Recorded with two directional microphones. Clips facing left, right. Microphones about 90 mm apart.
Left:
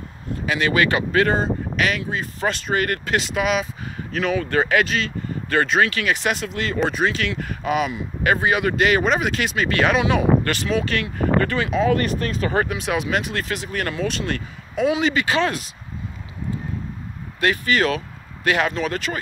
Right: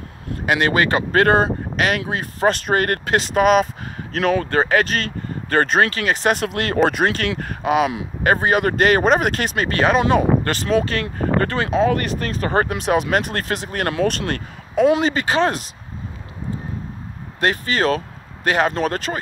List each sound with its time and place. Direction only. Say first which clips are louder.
0.5 s speech: right 2 dB; 45° right (ahead or behind)
1.1 s speech: right 7 dB; 55° right (ahead or behind)
4.5 s speech: right 1 dB; 35° right (ahead or behind)
4.9 s speech: even; 45° right (ahead or behind)
17.4 s speech: even; 35° right (ahead or behind)